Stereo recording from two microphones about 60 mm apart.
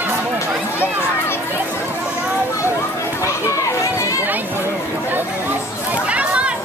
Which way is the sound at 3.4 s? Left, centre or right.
Left.